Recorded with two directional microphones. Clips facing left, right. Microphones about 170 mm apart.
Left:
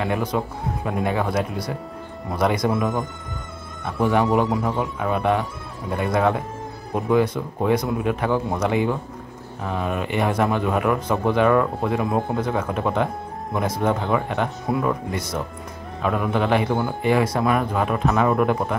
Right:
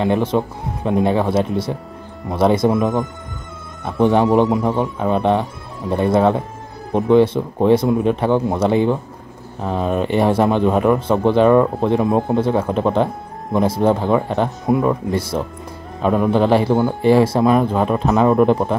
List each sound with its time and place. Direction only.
0.0 s speech: 25° right (ahead or behind)